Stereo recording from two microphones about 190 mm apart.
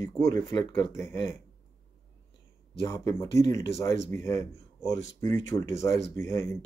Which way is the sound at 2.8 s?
15° left (ahead or behind).